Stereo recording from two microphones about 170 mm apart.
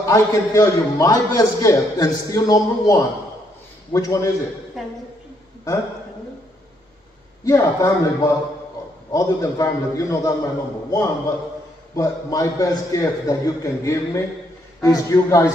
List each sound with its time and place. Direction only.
0.0 s a man's voice: 20° left (ahead or behind)
7.4 s a man's voice: 20° left (ahead or behind)